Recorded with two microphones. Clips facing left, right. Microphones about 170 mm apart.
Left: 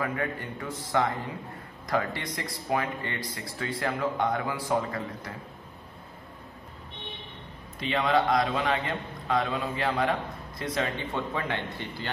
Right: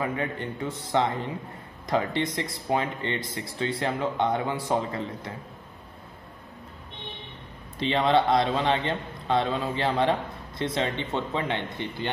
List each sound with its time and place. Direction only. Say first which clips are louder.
0.0 s a man's voice: right 2 dB; 25° right (ahead or behind)
7.8 s a man's voice: right 3 dB; 30° right (ahead or behind)